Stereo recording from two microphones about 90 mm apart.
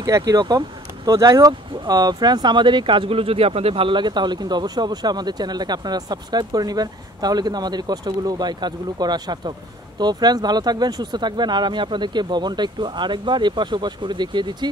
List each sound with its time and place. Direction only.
0.0 s speech: 45° right (ahead or behind)